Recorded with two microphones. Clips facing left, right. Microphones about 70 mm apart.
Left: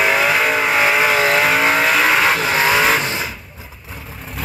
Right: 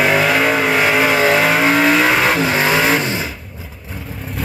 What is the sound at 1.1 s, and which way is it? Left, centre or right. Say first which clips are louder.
Vehicle: right 2 dB; right.